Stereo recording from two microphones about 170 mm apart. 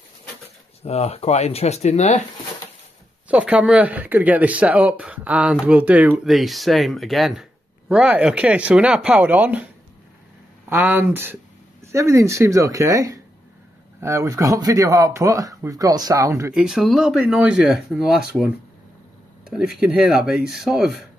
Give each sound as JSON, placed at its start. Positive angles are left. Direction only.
{"t": 0.8, "sound": "speech", "side_deg": 40}
{"t": 3.3, "sound": "speech", "side_deg": -5}
{"t": 10.7, "sound": "speech", "side_deg": -10}
{"t": 16.5, "sound": "speech", "side_deg": -5}
{"t": 19.4, "sound": "speech", "side_deg": -5}